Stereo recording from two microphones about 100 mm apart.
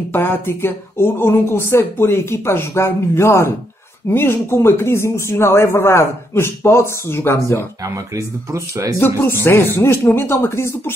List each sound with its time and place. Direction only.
0.1 s speech: 20° left (ahead or behind)
7.8 s speech: 35° right (ahead or behind)
8.9 s speech: 20° left (ahead or behind)